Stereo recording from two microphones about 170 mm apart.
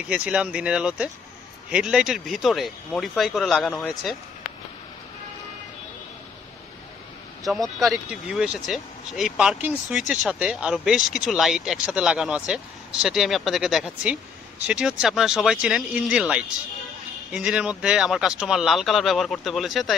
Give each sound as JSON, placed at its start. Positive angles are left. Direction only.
{"t": 0.1, "sound": "speech", "side_deg": -5}
{"t": 7.4, "sound": "speech", "side_deg": 0}